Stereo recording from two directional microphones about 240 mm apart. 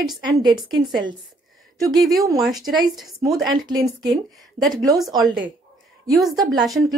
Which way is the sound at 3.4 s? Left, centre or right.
Centre.